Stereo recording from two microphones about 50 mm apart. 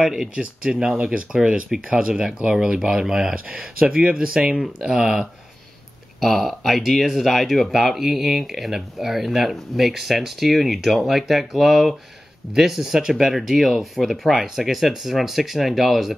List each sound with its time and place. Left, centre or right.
0.0 s speech: centre
0.4 s speech: centre
3.3 s speech: right; by 5.2 s centre
6.2 s speech: centre